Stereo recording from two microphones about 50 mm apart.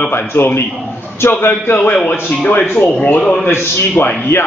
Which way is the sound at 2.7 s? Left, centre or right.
Left.